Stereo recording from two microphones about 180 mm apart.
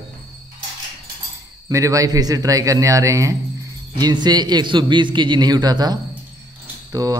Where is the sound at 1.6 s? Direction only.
20° right (ahead or behind).